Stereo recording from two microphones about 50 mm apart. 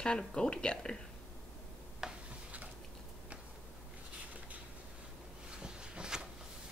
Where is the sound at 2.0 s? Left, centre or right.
Centre.